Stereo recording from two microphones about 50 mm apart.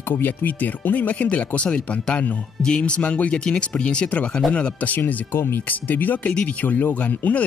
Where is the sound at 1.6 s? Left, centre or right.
Centre.